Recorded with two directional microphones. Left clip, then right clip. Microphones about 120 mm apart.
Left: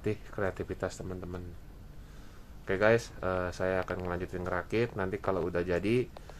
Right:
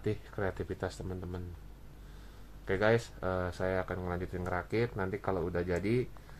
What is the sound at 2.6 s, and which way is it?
Speech, 40° left (ahead or behind).